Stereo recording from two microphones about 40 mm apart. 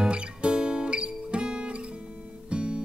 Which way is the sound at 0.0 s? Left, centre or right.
Right.